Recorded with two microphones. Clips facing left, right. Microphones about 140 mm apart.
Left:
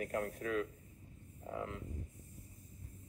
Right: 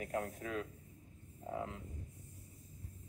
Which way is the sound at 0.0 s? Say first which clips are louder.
Left 2 dB; 25° right (ahead or behind).